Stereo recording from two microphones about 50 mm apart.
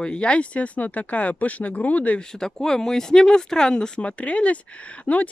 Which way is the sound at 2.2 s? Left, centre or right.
Centre.